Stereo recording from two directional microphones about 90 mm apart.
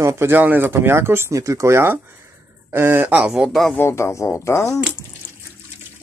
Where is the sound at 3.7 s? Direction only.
25° left (ahead or behind).